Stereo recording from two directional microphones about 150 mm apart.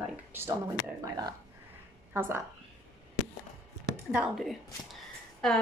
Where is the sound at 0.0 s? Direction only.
15° right (ahead or behind).